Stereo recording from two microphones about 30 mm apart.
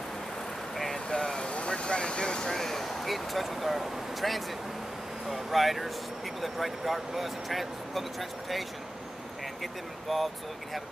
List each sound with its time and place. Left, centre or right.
0.9 s vehicle: left
1.8 s speech: left
2.5 s speech: centre